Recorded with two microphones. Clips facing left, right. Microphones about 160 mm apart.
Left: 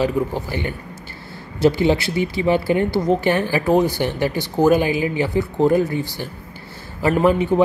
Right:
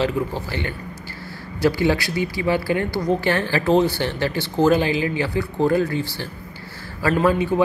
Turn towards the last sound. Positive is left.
turn(degrees=20)  # may be behind; listen again after turning